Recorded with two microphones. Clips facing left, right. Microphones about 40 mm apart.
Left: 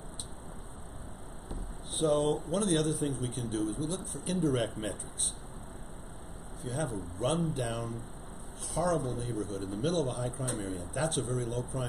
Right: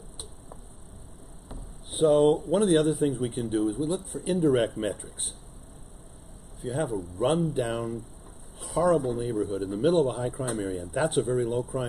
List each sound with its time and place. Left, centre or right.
1.9 s a man's voice: centre
6.6 s a man's voice: centre
9.7 s a man's voice: centre
9.9 s a man's voice: right